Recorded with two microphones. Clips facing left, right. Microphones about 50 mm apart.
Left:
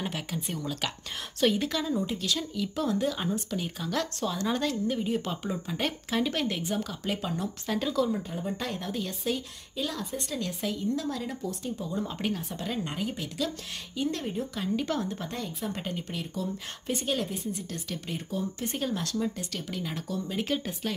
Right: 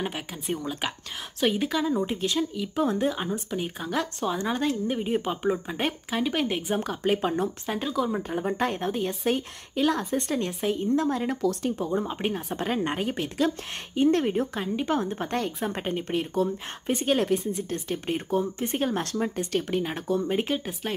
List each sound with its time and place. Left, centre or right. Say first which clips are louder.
0.0 s a woman's voice: right 2 dB; centre
2.0 s speech: right 4 dB; right
2.9 s speech: right 2 dB; right
6.7 s speech: right 6 dB; right
7.6 s speech: even; centre
8.2 s speech: right 7 dB; right
11.6 s speech: right 7 dB; right
11.9 s speech: right 4 dB; right
12.5 s speech: right 6 dB; right
14.8 s speech: right 4 dB; right
15.2 s speech: right 6 dB; right
15.7 s speech: right 6 dB; right
18.9 s speech: right 3 dB; right
20.4 s speech: right 2 dB; centre